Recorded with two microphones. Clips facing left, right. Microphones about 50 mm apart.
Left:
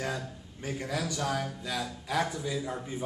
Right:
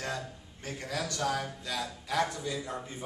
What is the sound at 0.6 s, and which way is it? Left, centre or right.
A man's voice, centre.